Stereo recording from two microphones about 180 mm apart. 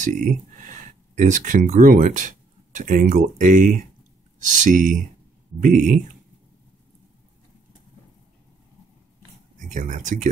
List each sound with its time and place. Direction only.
0.0 s speech: 45° right (ahead or behind)
9.8 s speech: 45° right (ahead or behind)